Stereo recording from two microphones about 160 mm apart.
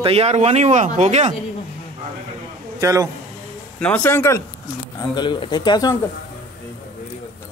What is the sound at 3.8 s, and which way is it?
Speech, 10° left (ahead or behind).